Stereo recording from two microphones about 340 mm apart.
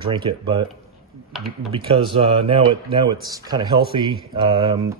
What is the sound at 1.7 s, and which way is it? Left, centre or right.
Speech, centre.